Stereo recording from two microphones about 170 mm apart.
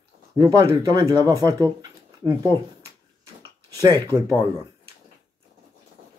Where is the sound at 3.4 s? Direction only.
20° right (ahead or behind).